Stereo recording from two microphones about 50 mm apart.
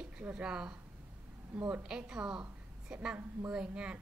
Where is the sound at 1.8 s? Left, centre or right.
Centre.